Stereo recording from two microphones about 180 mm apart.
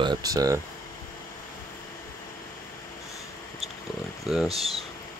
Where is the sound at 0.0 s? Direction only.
20° right (ahead or behind).